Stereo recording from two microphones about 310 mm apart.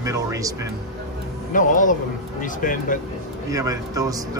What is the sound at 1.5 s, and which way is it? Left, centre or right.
Speech, left.